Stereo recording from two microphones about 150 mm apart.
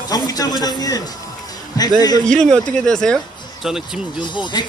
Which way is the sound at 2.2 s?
5° left (ahead or behind).